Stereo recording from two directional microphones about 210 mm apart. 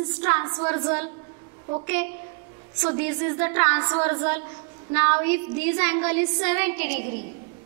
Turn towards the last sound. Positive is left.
turn(degrees=-55)  # may be behind; listen again after turning